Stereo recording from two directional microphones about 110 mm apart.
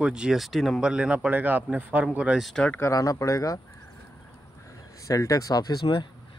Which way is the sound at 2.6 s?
20° left (ahead or behind).